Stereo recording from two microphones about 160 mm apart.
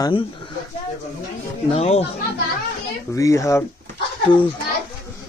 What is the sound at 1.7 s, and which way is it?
Speech, 40° left (ahead or behind).